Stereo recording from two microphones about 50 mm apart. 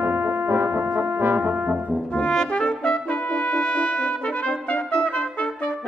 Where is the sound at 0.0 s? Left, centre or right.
Right.